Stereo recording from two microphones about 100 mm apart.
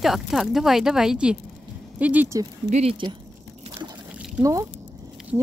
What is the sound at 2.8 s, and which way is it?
Speech, 75° right (ahead or behind).